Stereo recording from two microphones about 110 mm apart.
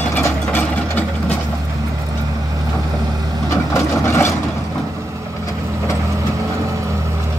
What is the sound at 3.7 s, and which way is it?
Vehicle, 25° left (ahead or behind).